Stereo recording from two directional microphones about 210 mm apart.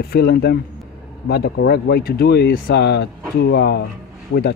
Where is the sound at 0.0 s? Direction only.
45° left (ahead or behind).